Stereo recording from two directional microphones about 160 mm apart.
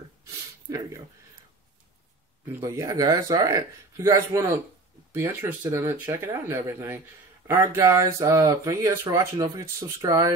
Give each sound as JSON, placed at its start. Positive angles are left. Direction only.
{"t": 2.6, "sound": "speech", "side_deg": -20}